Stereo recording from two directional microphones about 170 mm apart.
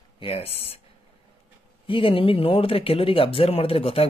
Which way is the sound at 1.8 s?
30° left (ahead or behind).